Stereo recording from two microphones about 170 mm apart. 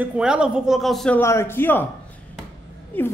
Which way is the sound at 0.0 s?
5° right (ahead or behind).